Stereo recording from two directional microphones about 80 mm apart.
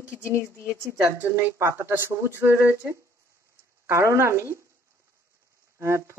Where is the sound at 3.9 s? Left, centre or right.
Right.